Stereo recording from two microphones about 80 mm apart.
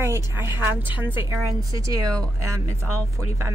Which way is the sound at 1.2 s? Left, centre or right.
Right.